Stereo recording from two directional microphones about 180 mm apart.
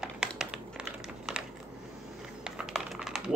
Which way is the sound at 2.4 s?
Centre (ahead or behind).